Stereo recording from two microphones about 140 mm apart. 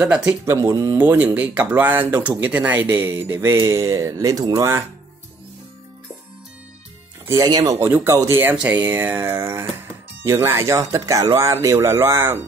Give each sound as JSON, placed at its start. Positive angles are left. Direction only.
{"t": 0.0, "sound": "speech", "side_deg": -10}
{"t": 7.2, "sound": "speech", "side_deg": -25}
{"t": 7.8, "sound": "speech", "side_deg": -15}